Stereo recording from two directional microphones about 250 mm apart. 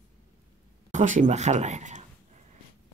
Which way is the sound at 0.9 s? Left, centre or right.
Right.